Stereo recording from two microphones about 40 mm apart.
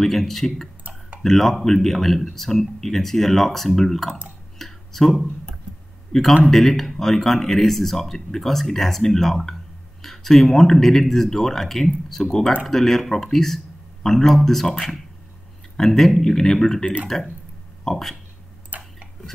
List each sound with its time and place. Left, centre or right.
0.0 s speech: centre
4.6 s a sound: centre
6.5 s speech: centre
18.7 s tick-tock: right